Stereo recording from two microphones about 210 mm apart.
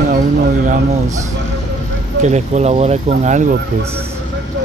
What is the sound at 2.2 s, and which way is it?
Speech, 30° right (ahead or behind).